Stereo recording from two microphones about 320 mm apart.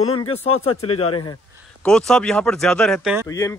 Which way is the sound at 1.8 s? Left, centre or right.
Centre.